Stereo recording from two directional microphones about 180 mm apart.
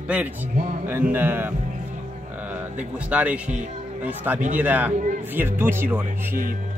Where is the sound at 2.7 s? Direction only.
5° right (ahead or behind).